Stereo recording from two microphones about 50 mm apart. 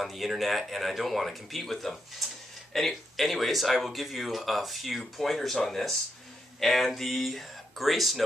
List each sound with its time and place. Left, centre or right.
0.0 s speech: centre